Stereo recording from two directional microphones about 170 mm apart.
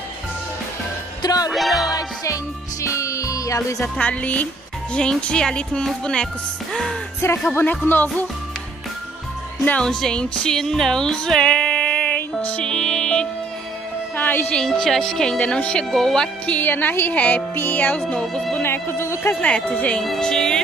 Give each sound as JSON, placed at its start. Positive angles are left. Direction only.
{"t": 1.2, "sound": "music", "side_deg": 20}
{"t": 1.5, "sound": "music", "side_deg": 0}
{"t": 2.0, "sound": "music", "side_deg": 20}
{"t": 3.9, "sound": "a woman's voice", "side_deg": 10}
{"t": 7.2, "sound": "a woman's voice", "side_deg": 15}
{"t": 9.7, "sound": "music", "side_deg": 5}
{"t": 14.1, "sound": "a woman's voice", "side_deg": 10}